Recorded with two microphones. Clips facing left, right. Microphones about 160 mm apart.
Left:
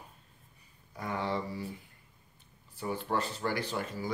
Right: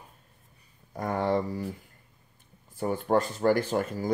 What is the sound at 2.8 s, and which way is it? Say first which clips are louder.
Speech: right 7 dB; 50° right (ahead or behind).